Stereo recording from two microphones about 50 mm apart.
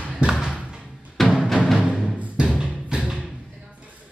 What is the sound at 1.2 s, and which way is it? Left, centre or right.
Music, centre.